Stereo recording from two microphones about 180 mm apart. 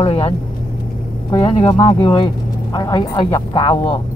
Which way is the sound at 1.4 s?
30° left (ahead or behind).